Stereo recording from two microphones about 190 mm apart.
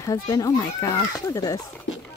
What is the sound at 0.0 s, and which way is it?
Speech, 20° left (ahead or behind).